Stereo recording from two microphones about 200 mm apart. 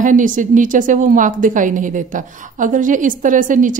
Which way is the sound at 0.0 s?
40° right (ahead or behind).